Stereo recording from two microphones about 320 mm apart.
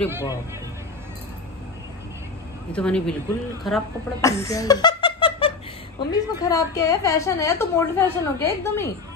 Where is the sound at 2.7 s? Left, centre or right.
Centre.